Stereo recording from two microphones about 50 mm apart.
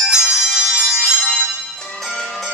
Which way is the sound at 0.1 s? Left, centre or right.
Centre.